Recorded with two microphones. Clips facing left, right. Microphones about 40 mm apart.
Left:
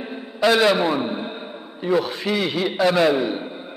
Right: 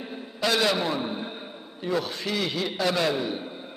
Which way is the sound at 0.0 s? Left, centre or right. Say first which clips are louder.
Left 8 dB; centre.